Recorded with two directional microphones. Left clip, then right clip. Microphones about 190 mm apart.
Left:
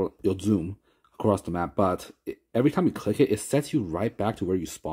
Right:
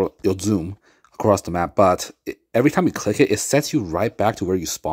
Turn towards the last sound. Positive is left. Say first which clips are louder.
# right 6 dB
turn(degrees=-15)  # may be behind; listen again after turning